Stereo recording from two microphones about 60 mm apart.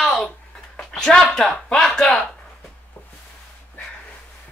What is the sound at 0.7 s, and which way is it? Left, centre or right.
Speech, centre.